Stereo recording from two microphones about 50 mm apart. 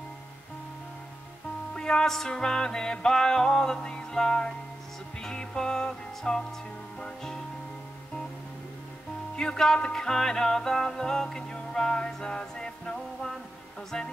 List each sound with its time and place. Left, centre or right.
1.8 s music: centre
9.4 s music: centre